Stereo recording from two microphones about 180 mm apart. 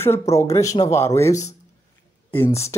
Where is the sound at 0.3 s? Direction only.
15° left (ahead or behind).